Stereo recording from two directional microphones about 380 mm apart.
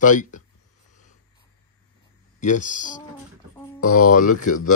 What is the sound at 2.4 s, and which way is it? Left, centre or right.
Speech, centre.